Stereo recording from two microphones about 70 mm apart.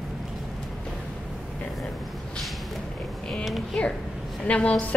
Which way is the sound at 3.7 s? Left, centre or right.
Centre.